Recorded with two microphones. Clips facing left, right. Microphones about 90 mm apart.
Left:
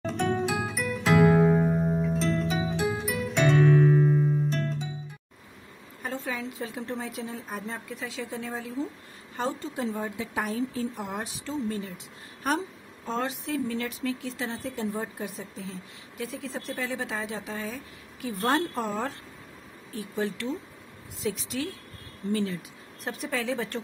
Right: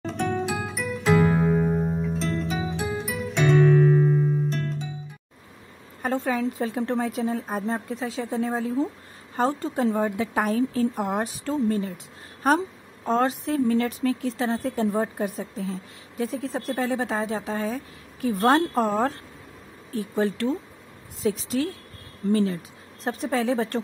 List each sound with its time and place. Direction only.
0.0 s music: centre (ahead or behind)
6.0 s a woman's voice: 50° right (ahead or behind)
13.0 s a woman's voice: 45° right (ahead or behind)